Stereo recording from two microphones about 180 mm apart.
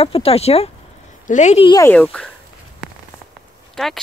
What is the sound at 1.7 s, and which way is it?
Speech, 15° left (ahead or behind).